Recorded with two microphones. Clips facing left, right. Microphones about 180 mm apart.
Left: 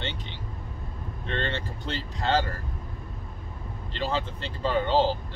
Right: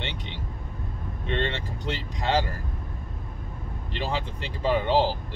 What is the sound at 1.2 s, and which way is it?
Speech, 15° right (ahead or behind).